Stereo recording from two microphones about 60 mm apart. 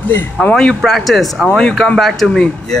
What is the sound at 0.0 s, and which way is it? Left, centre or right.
Speech, left.